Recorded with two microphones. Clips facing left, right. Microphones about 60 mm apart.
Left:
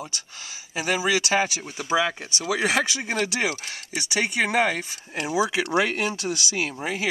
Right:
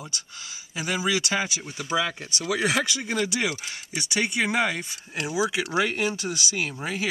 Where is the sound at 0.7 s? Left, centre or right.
Left.